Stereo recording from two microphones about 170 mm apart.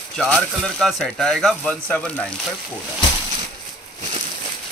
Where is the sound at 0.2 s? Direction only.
5° left (ahead or behind).